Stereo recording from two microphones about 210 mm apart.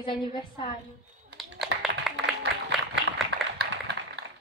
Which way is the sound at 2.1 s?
Centre (ahead or behind).